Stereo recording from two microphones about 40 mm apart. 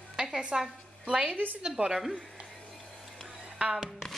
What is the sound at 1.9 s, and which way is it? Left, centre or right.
Speech, centre.